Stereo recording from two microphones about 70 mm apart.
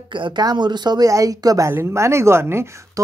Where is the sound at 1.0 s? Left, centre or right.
Right.